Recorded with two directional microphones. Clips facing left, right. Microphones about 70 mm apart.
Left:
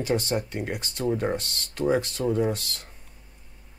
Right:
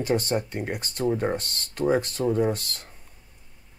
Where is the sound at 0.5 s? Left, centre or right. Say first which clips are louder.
Right 1 dB; centre.